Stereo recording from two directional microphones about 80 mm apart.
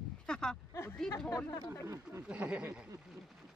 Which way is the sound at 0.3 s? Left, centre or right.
Centre.